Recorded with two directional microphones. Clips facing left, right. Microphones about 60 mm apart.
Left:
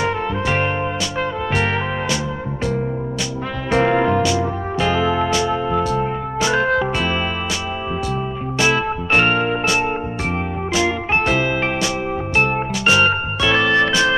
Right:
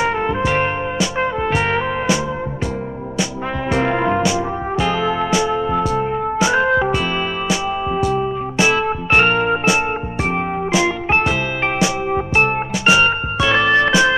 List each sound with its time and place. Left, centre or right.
0.0 s music: right
4.0 s music: centre
8.0 s music: centre
12.4 s music: right